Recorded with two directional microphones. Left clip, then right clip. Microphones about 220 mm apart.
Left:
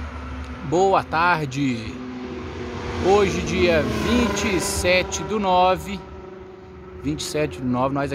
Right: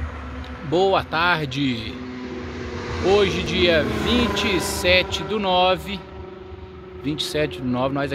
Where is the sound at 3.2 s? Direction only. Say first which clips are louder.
Right 1 dB; 5° left (ahead or behind).